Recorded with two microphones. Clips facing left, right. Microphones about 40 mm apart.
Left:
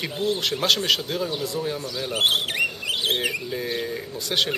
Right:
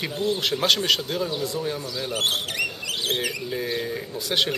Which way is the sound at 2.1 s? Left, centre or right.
Centre.